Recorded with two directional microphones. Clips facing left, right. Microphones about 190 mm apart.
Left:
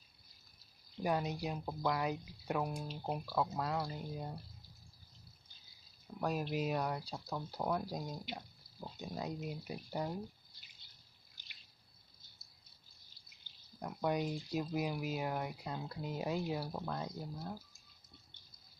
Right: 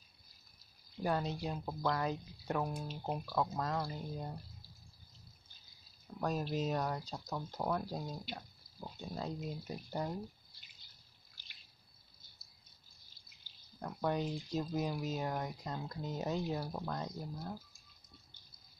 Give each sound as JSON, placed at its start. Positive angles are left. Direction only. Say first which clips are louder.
{"t": 1.0, "sound": "speech", "louder": "even", "side_deg": 15}
{"t": 2.8, "sound": "speech", "louder": "even", "side_deg": 0}
{"t": 6.2, "sound": "speech", "louder": "even", "side_deg": 10}
{"t": 13.7, "sound": "speech", "louder": "even", "side_deg": 10}